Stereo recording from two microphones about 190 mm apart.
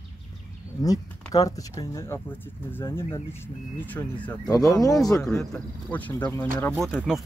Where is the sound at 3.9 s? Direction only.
15° left (ahead or behind).